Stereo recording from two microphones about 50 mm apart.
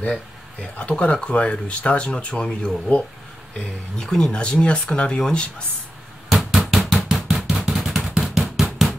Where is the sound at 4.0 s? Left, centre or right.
Centre.